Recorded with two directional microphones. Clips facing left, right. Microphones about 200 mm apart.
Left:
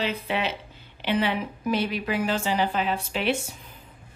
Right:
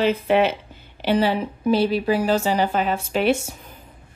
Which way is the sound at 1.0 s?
35° right (ahead or behind).